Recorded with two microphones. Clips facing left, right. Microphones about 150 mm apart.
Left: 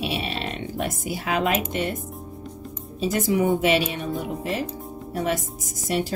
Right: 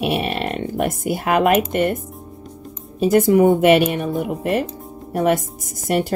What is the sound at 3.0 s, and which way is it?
A woman's voice, 55° right (ahead or behind).